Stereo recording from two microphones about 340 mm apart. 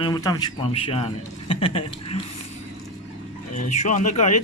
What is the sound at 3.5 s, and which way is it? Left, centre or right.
Speech, left.